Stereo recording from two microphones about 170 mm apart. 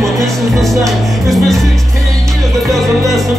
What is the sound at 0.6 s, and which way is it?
Music, centre (ahead or behind).